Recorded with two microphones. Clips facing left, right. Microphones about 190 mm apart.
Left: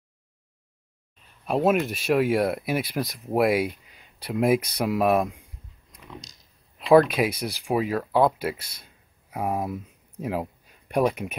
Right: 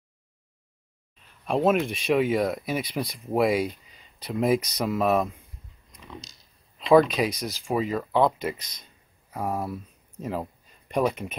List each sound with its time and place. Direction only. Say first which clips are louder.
1.4 s speech: even; 5° left (ahead or behind)
5.9 s a sound: even; 10° left (ahead or behind)
6.8 s speech: left 1 dB; 5° left (ahead or behind)